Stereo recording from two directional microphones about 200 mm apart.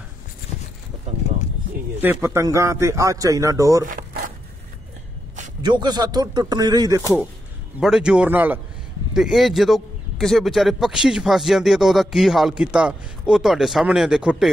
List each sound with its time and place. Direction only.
2.0 s a man's voice: 10° right (ahead or behind)
5.6 s speech: 20° right (ahead or behind)
7.8 s a man's voice: 5° right (ahead or behind)